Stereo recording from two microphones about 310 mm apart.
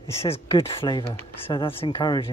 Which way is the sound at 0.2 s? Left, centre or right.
Centre.